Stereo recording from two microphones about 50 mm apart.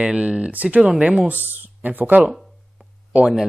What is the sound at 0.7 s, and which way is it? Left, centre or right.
Speech, centre.